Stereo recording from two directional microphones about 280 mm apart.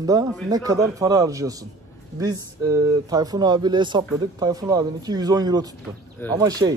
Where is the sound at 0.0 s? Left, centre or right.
Centre.